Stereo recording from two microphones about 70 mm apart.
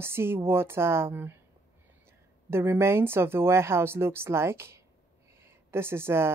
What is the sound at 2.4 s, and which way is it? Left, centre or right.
Speech, right.